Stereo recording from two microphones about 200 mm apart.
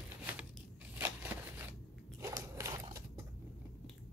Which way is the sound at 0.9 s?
10° right (ahead or behind).